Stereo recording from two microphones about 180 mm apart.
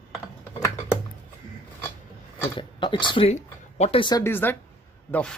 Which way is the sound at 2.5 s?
25° left (ahead or behind).